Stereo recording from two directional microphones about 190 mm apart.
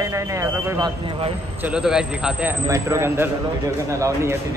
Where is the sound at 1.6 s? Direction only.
5° right (ahead or behind).